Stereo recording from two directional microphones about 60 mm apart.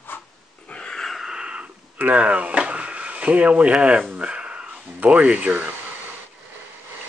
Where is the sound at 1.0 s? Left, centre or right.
Centre.